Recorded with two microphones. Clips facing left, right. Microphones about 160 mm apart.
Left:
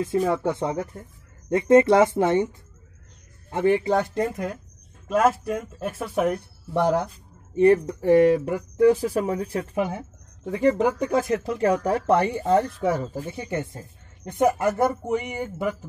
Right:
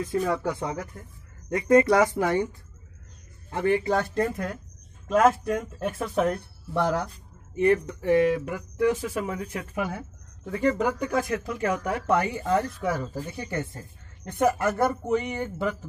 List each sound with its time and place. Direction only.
0.0 s speech: 25° left (ahead or behind)
5.0 s speech: 5° left (ahead or behind)
7.5 s speech: 35° left (ahead or behind)
9.8 s speech: 20° left (ahead or behind)